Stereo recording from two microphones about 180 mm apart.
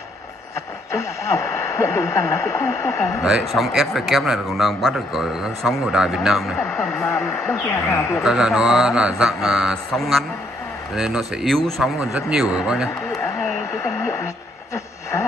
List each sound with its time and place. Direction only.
0.9 s speech: 15° left (ahead or behind)
3.2 s speech: centre (ahead or behind)
7.6 s speech: 15° left (ahead or behind)
8.2 s speech: 5° right (ahead or behind)
13.8 s speech: 15° left (ahead or behind)